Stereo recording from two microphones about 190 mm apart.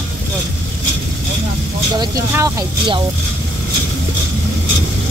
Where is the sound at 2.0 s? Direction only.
15° right (ahead or behind).